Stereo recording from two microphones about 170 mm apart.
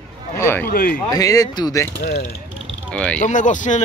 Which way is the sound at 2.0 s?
60° left (ahead or behind).